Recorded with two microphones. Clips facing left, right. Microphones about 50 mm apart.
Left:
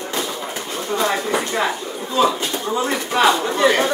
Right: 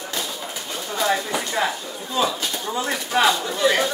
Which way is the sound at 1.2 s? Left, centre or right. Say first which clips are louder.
Left 5 dB; left.